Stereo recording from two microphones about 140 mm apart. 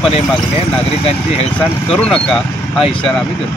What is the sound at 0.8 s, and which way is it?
Speech, 50° left (ahead or behind).